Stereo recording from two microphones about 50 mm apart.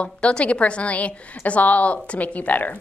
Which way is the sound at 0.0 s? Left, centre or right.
Centre.